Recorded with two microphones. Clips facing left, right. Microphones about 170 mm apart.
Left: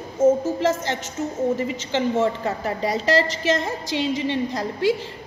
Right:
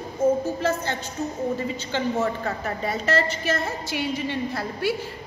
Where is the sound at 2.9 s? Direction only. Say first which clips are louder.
Left 3 dB; 90° left.